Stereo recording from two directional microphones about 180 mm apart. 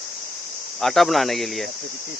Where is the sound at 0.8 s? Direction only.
Centre (ahead or behind).